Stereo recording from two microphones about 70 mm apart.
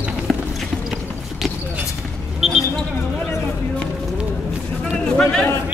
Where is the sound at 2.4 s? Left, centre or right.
Centre.